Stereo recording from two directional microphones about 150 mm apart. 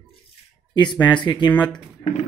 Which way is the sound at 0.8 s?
30° left (ahead or behind).